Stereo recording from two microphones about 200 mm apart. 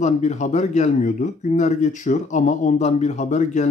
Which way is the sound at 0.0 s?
35° left (ahead or behind).